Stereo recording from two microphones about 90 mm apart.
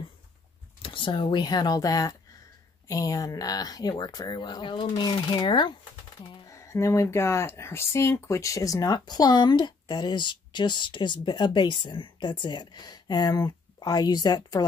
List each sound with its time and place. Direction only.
0.8 s speech: 70° left (ahead or behind)
6.4 s speech: 35° left (ahead or behind)